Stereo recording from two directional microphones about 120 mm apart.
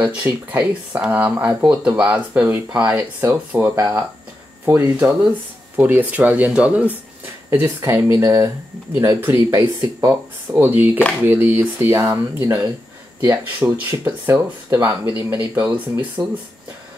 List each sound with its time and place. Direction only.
0.0 s speech: 15° right (ahead or behind)
7.5 s speech: 20° right (ahead or behind)